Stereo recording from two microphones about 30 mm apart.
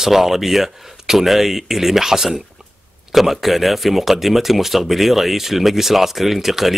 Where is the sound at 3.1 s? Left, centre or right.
Centre.